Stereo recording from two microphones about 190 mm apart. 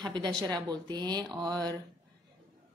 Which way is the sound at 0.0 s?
20° right (ahead or behind).